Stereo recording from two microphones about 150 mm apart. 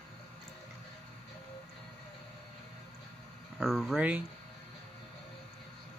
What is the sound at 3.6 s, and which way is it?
Speech, 5° left (ahead or behind).